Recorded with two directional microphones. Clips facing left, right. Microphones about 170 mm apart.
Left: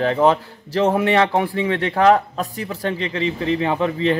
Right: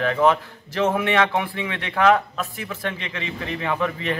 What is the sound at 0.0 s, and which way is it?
A man's voice, 30° left (ahead or behind).